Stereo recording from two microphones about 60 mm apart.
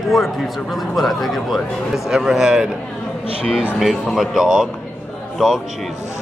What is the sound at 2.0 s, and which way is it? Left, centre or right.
Speech, centre.